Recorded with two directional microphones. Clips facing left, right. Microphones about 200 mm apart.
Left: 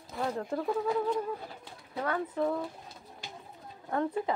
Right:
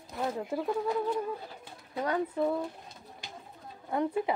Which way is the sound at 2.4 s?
5° right (ahead or behind).